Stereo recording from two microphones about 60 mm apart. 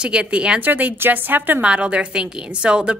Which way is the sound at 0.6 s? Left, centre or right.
Right.